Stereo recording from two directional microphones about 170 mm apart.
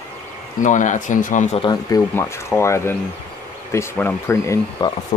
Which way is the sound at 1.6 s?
25° left (ahead or behind).